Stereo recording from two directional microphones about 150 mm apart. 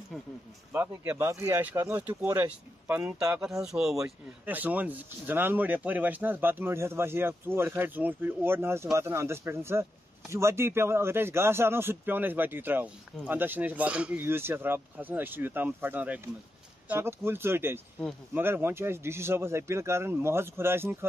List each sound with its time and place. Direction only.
0.7 s speech: 15° right (ahead or behind)